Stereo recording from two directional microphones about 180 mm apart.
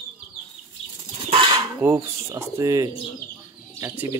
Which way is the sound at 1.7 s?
15° right (ahead or behind).